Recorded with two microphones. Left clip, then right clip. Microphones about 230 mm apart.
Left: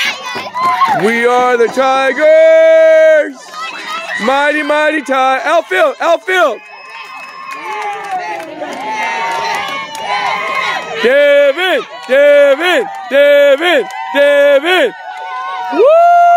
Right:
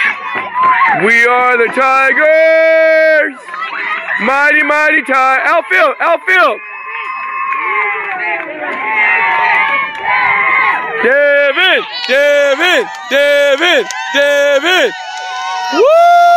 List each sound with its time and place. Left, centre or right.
1.0 s speech: centre
4.3 s speech: centre
8.8 s run: left
11.1 s speech: centre
15.8 s a sound: centre